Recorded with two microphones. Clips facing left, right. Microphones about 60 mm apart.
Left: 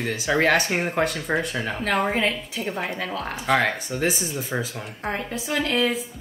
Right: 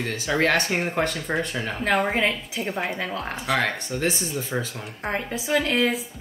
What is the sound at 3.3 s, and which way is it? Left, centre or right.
Speech, centre.